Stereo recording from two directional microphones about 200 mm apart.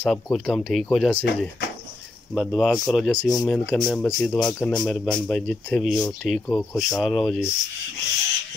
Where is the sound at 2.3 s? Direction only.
Centre (ahead or behind); by 7.0 s 15° left (ahead or behind).